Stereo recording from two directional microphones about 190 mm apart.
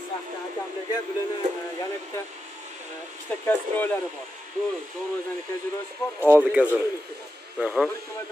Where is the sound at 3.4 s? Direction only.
10° left (ahead or behind).